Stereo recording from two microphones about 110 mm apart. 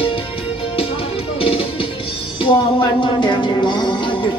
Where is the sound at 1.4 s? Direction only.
55° left (ahead or behind).